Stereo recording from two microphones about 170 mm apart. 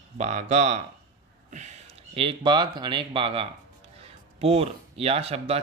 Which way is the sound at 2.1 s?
30° right (ahead or behind).